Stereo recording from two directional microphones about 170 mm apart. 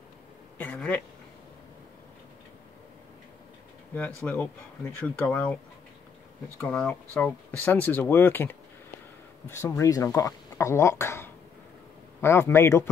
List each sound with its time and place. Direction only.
0.6 s speech: 10° left (ahead or behind)
4.2 s speech: 5° left (ahead or behind)
6.7 s speech: 5° left (ahead or behind)